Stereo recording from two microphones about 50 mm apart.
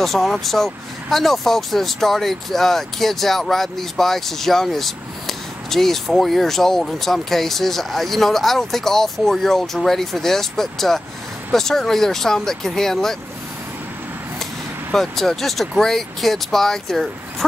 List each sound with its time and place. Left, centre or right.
0.0 s speech: centre
15.0 s speech: centre